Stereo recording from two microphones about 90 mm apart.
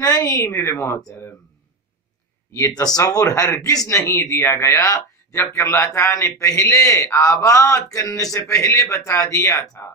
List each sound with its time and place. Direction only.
0.6 s a man's voice: 30° left (ahead or behind)
2.8 s a man's voice: 45° left (ahead or behind)
4.0 s a man's voice: 30° left (ahead or behind)